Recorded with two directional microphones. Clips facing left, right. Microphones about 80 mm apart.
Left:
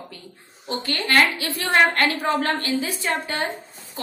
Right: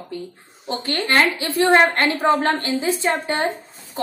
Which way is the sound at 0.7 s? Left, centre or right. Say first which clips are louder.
Right 2 dB; right.